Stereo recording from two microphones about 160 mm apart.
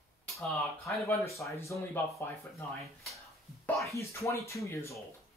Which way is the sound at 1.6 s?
20° left (ahead or behind).